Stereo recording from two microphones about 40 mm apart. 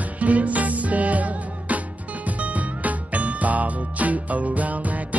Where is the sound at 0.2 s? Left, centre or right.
Right.